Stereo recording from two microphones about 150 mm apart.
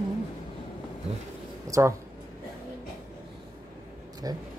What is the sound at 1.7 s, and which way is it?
Speech, 20° right (ahead or behind).